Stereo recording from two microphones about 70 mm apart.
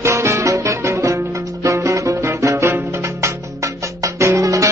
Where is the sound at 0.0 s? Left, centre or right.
Right.